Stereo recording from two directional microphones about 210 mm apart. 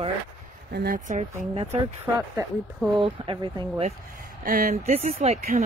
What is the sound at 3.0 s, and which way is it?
Speech, 25° right (ahead or behind).